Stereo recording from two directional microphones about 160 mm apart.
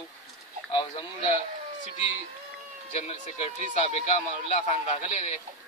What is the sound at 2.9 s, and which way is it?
A man's voice, 45° left (ahead or behind).